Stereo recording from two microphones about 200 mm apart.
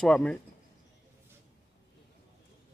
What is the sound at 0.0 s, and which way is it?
Speech, 5° left (ahead or behind).